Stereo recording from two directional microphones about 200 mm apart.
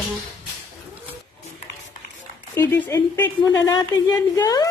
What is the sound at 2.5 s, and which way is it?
A woman's voice, 10° left (ahead or behind).